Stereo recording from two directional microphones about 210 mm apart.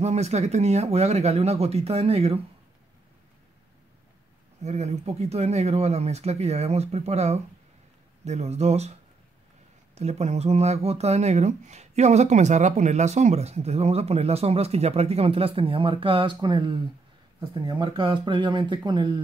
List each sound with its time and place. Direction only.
0.0 s speech: 30° right (ahead or behind)
4.6 s speech: 30° right (ahead or behind)
9.9 s speech: 30° right (ahead or behind)